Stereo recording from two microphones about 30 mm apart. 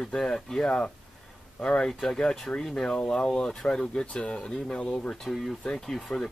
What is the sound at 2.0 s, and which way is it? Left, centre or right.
Speech, centre.